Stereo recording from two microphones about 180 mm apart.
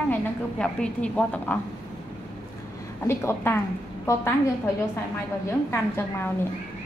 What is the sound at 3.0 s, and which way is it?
Speech, 15° left (ahead or behind).